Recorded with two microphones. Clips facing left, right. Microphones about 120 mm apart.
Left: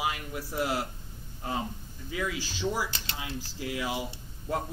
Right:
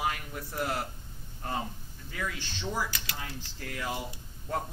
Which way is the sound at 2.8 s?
30° left (ahead or behind).